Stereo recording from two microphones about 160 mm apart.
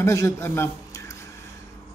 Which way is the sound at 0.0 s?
20° left (ahead or behind).